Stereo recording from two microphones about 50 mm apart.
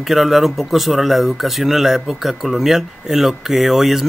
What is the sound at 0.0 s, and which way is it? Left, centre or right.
Speech, centre.